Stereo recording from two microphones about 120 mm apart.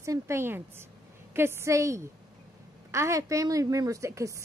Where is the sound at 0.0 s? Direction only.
25° right (ahead or behind).